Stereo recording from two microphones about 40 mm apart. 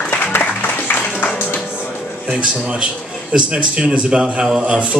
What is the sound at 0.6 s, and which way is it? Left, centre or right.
Music, left.